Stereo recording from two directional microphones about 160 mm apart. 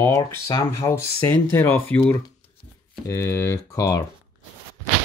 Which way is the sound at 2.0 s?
25° left (ahead or behind).